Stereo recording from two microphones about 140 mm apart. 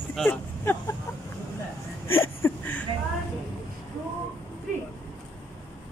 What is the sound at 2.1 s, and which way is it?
Speech, 15° left (ahead or behind).